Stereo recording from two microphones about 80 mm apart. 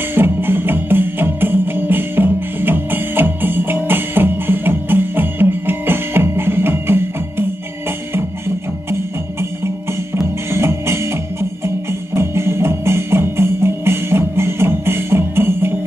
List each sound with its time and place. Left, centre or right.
0.1 s music: right
10.5 s music: right